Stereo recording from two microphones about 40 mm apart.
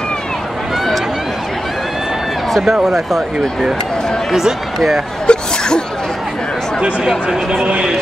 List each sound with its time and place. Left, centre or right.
2.5 s speech: centre
4.3 s speech: centre
5.2 s sneeze: left
7.6 s a man's voice: right